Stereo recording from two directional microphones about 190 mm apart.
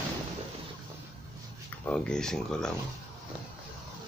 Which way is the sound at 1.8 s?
5° left (ahead or behind).